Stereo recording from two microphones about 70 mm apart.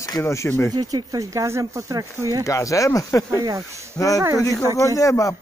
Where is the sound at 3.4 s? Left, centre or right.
Right.